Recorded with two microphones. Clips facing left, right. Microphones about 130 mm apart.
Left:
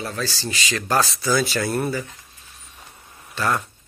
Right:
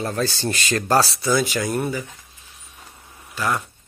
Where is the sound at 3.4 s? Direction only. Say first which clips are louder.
Left 1 dB; 10° right (ahead or behind).